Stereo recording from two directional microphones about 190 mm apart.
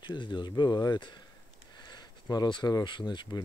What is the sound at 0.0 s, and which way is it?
Speech, 25° left (ahead or behind).